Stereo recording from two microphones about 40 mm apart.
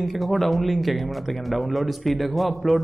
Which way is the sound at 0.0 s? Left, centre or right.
Centre.